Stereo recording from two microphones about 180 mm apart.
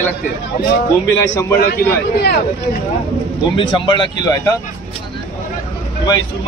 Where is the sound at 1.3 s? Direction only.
15° left (ahead or behind).